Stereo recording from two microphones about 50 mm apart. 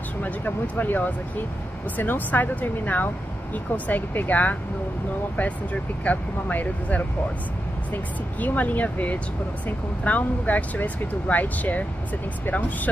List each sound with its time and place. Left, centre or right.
0.2 s speech: left